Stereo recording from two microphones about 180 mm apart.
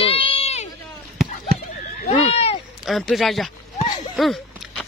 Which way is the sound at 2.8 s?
Centre (ahead or behind).